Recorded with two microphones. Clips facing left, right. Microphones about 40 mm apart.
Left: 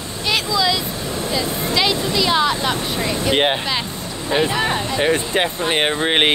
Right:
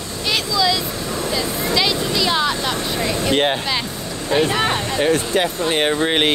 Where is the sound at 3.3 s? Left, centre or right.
Centre.